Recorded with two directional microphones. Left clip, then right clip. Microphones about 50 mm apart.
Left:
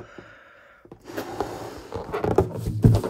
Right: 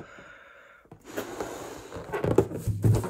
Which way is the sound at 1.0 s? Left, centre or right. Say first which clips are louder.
Left 4 dB; left.